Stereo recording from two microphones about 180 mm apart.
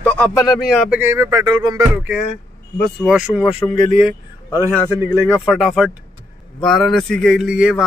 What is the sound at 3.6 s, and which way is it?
Speech, 30° left (ahead or behind).